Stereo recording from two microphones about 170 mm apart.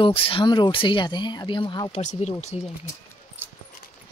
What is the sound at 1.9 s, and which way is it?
Speech, 40° left (ahead or behind).